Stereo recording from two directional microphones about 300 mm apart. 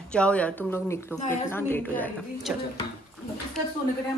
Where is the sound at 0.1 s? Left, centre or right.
Centre.